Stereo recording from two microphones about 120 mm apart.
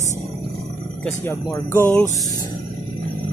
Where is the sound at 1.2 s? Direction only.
20° left (ahead or behind).